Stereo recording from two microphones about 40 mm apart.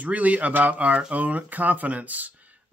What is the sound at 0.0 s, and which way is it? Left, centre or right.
Speech, right.